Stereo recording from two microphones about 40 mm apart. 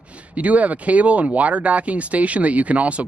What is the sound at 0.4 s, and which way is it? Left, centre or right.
Speech, right.